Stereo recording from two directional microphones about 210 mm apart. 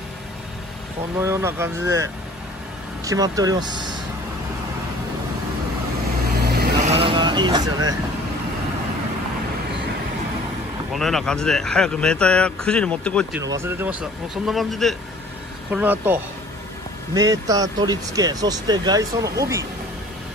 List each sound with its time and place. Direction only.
1.2 s speech: 10° right (ahead or behind)
3.1 s speech: 15° right (ahead or behind)
6.4 s vehicle: 50° right (ahead or behind)
6.8 s speech: 30° right (ahead or behind)
10.9 s speech: centre (ahead or behind)
13.4 s speech: 15° right (ahead or behind)